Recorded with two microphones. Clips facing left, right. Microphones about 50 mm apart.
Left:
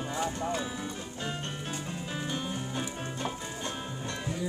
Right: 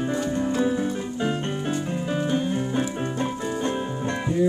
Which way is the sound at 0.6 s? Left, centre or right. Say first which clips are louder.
Right 13 dB; centre.